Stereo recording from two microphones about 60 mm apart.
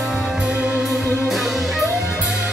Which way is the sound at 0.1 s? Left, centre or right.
Centre.